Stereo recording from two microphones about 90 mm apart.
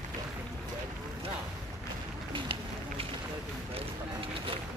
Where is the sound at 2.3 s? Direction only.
70° right (ahead or behind).